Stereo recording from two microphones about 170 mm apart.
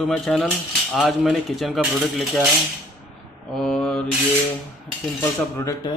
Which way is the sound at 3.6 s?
5° left (ahead or behind).